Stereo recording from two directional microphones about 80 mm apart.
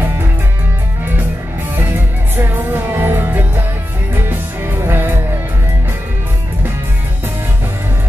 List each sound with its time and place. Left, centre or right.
1.8 s music: right